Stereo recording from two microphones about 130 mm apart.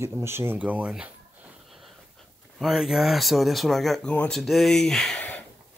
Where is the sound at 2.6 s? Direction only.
Centre (ahead or behind).